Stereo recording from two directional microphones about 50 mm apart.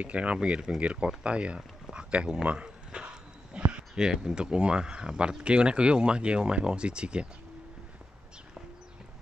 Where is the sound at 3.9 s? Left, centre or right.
Centre.